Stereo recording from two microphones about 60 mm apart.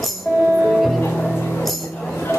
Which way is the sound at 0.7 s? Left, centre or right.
Centre.